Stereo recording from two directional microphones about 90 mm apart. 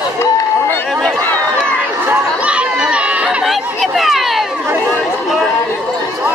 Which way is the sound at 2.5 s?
10° right (ahead or behind).